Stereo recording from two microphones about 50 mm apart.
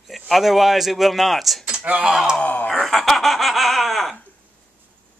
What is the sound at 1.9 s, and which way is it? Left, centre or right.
Speech, right.